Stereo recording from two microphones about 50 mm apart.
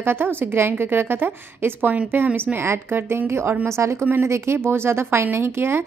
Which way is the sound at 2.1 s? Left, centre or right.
Right.